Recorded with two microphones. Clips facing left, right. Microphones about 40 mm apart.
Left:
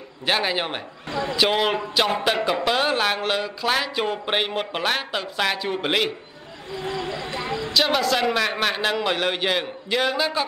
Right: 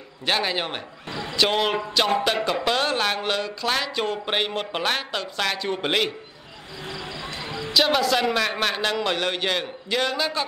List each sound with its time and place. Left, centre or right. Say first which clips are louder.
0.2 s speech: left 1 dB; centre
6.8 s vehicle: left 5 dB; left
7.7 s a man's voice: right 1 dB; centre